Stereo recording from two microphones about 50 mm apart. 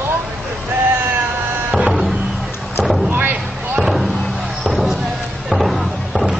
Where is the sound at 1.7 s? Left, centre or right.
Centre.